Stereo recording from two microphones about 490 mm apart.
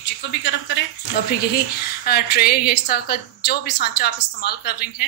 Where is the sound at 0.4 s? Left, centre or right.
Left.